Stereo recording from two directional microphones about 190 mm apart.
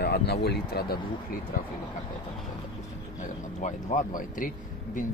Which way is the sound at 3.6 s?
45° left (ahead or behind).